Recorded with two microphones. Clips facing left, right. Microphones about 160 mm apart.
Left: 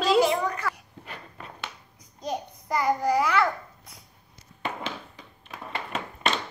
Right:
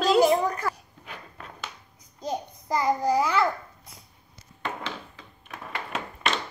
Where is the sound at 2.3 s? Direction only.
25° right (ahead or behind).